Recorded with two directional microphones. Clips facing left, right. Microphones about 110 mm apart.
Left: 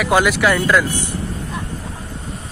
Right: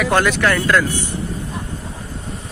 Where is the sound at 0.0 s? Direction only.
5° left (ahead or behind).